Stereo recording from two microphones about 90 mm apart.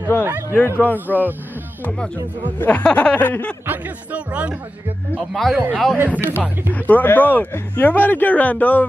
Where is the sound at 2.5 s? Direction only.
20° left (ahead or behind).